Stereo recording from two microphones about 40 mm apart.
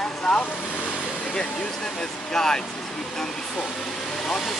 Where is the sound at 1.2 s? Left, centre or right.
Centre.